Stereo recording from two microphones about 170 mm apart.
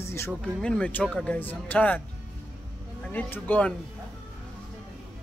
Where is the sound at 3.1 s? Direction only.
10° left (ahead or behind).